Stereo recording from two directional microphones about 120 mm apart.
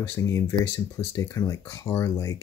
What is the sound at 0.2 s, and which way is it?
Speech, 25° left (ahead or behind).